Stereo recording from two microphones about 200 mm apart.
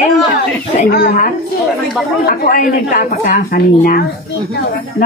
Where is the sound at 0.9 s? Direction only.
50° left (ahead or behind).